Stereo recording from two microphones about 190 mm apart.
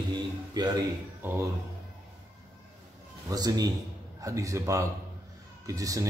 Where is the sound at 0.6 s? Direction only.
20° right (ahead or behind).